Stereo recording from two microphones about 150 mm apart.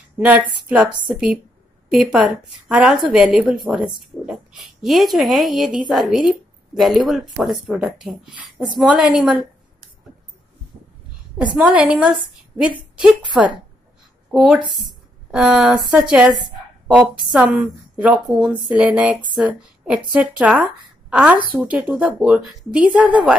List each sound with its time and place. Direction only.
0.7 s a woman's voice: 10° right (ahead or behind)
11.5 s a woman's voice: 5° right (ahead or behind)
14.3 s a woman's voice: 5° right (ahead or behind)